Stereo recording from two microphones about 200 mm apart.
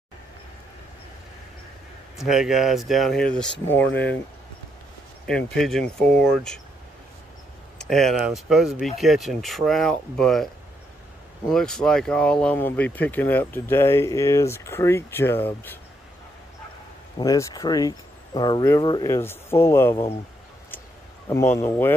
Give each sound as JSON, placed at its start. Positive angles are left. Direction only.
{"t": 2.1, "sound": "speech", "side_deg": 0}
{"t": 5.2, "sound": "speech", "side_deg": 5}
{"t": 7.8, "sound": "speech", "side_deg": 0}
{"t": 11.5, "sound": "speech", "side_deg": 5}
{"t": 17.2, "sound": "speech", "side_deg": 20}
{"t": 21.3, "sound": "speech", "side_deg": 15}